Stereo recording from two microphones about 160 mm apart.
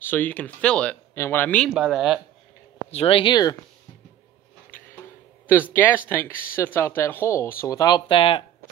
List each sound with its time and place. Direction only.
0.0 s speech: 10° left (ahead or behind)
1.7 s speech: 5° right (ahead or behind)
2.9 s speech: 35° left (ahead or behind)
5.5 s speech: 15° left (ahead or behind); by 8.5 s 35° left (ahead or behind)